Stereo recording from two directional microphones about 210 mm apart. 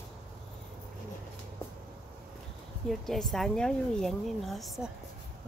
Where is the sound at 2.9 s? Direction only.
Centre (ahead or behind).